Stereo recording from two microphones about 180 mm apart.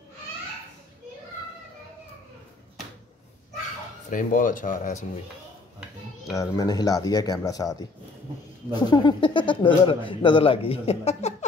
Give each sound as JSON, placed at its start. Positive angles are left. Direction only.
{"t": 4.1, "sound": "speech", "side_deg": 45}
{"t": 6.3, "sound": "speech", "side_deg": 15}
{"t": 8.9, "sound": "speech", "side_deg": 25}